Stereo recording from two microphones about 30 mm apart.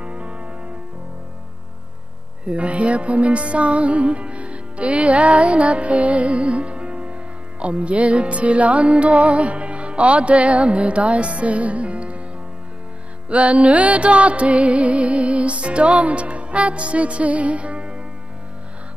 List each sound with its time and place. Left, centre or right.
0.0 s music: right
2.4 s music: right
13.3 s music: right